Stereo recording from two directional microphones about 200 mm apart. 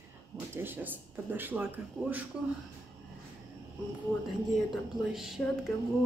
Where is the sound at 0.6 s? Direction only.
10° right (ahead or behind).